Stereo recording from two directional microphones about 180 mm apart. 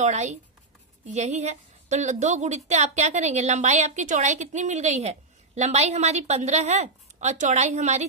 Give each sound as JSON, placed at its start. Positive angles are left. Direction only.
{"t": 0.0, "sound": "a woman's voice", "side_deg": -40}